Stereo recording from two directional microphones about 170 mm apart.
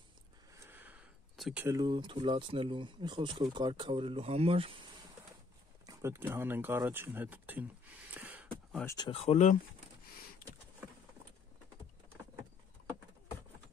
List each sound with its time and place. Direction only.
0.7 s a sound: 10° right (ahead or behind)
1.8 s speech: 25° right (ahead or behind)
5.9 s speech: 15° right (ahead or behind)
8.1 s a sound: 10° right (ahead or behind)
8.8 s speech: 25° left (ahead or behind)
9.2 s speech: 45° left (ahead or behind)